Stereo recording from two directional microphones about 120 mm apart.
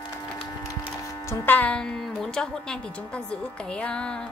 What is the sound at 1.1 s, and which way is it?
Speech, 25° left (ahead or behind).